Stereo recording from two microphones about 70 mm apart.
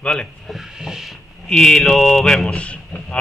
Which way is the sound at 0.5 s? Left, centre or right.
Centre.